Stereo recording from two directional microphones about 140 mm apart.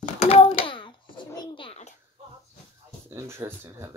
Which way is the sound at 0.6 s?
35° left (ahead or behind).